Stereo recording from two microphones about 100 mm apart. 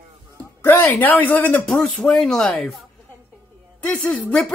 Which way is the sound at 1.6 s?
5° left (ahead or behind).